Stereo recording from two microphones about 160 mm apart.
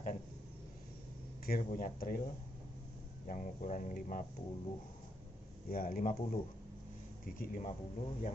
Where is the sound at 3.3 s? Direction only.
50° left (ahead or behind).